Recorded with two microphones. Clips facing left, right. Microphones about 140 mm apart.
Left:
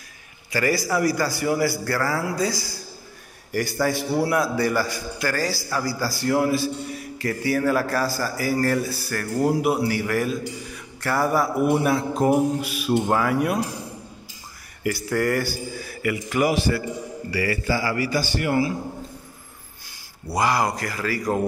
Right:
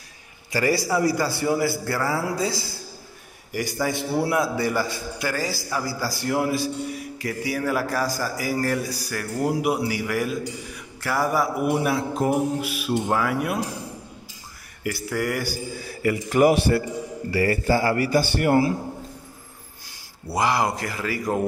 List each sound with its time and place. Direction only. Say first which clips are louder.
0.5 s a man's voice: right 1 dB; 30° right (ahead or behind); by 13.6 s 5° right (ahead or behind)
14.8 s a man's voice: left 3 dB; 5° right (ahead or behind)
16.0 s a man's voice: right 4 dB; 35° right (ahead or behind)
20.3 s a man's voice: even; 25° right (ahead or behind)